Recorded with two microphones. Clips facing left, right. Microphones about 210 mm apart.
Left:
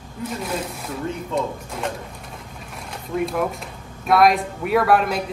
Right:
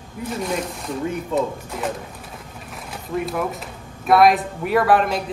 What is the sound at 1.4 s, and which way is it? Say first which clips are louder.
Speech: right 2 dB; centre (ahead or behind).